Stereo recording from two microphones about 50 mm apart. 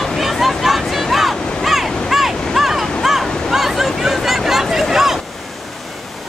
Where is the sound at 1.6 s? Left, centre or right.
Centre.